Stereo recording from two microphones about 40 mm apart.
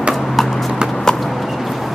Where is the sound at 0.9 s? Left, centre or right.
Centre.